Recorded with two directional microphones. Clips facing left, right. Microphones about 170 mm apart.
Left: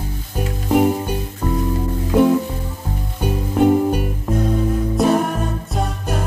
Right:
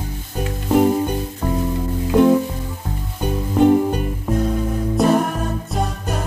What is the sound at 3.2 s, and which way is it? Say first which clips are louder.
Music: right 1 dB; 10° left (ahead or behind).